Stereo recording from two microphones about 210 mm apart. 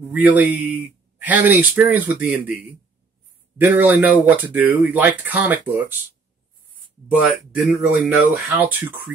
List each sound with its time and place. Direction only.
0.1 s speech: 10° right (ahead or behind)
7.1 s speech: 5° right (ahead or behind)